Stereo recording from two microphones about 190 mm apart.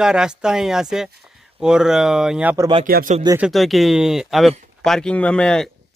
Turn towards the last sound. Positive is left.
turn(degrees=5)  # may be behind; listen again after turning